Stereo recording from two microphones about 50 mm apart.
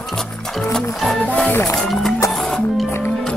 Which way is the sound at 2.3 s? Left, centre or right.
Centre.